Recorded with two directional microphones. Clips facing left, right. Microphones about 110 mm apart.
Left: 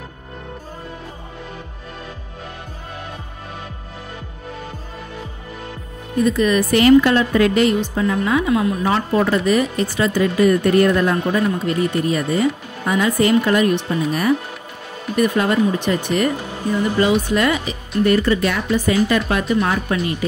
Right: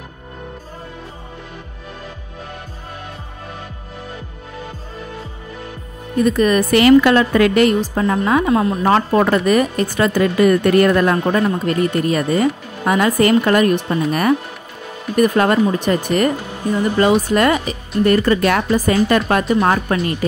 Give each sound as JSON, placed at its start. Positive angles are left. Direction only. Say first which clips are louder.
{"t": 6.2, "sound": "a woman's voice", "louder": "right 2 dB", "side_deg": -50}
{"t": 6.7, "sound": "speech", "louder": "right 1 dB", "side_deg": -90}
{"t": 7.8, "sound": "a woman's voice", "louder": "right 2 dB", "side_deg": -40}